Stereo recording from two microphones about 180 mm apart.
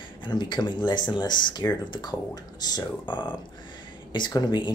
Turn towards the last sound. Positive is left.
turn(degrees=25)  # may be behind; listen again after turning